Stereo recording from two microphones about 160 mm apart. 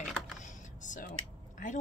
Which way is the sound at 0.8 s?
55° left (ahead or behind).